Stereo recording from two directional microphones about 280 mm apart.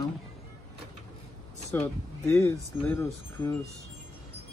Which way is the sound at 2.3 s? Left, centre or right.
Centre.